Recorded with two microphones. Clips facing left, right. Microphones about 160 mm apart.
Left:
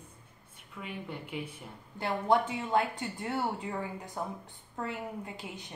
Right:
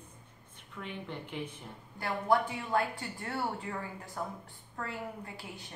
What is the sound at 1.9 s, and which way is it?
Speech, 20° left (ahead or behind).